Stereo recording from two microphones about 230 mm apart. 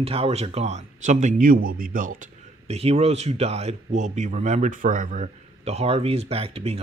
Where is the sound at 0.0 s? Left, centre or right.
Right.